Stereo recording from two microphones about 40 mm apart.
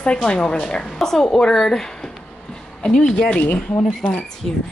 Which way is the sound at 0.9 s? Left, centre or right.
Centre.